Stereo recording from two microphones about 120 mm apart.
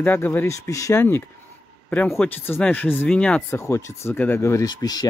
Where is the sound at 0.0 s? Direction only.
15° left (ahead or behind).